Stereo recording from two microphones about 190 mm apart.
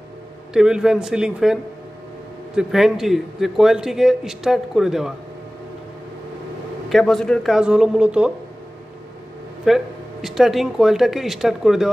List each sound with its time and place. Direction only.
0.5 s a man's voice: 5° right (ahead or behind)
6.9 s a man's voice: centre (ahead or behind)
9.7 s a man's voice: 5° right (ahead or behind)